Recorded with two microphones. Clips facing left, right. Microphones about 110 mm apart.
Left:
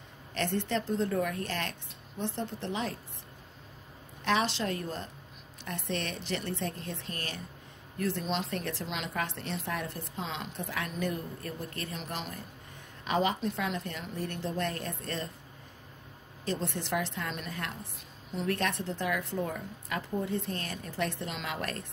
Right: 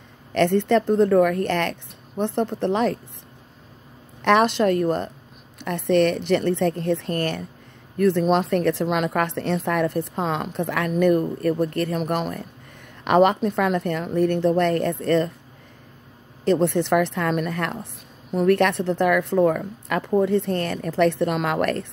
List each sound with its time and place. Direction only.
0.3 s a woman's voice: 65° right (ahead or behind)
4.2 s a woman's voice: 60° right (ahead or behind)
16.4 s a woman's voice: 65° right (ahead or behind)